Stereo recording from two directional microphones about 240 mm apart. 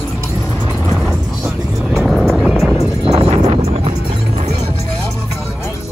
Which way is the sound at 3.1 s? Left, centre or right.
Right.